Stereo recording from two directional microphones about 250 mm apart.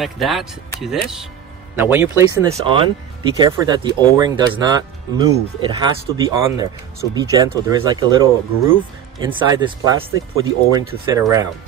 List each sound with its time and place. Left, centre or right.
0.0 s speech: centre